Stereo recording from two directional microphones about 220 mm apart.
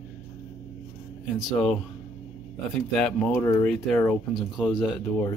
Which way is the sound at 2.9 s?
5° left (ahead or behind).